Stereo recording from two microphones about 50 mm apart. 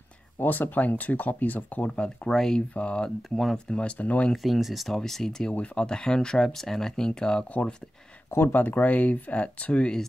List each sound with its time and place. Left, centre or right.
0.4 s speech: left
2.0 s speech: centre
2.3 s speech: centre
2.7 s speech: left
3.2 s speech: centre
3.5 s speech: centre
4.4 s speech: centre
5.5 s speech: left
8.3 s speech: left
8.5 s speech: left